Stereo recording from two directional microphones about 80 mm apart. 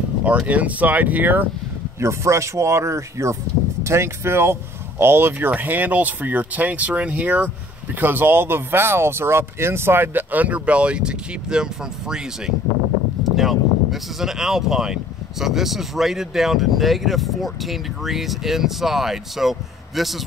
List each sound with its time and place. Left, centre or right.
0.2 s speech: centre
2.0 s speech: right; by 20.1 s centre